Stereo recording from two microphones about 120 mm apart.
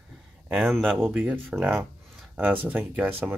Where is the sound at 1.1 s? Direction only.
15° right (ahead or behind).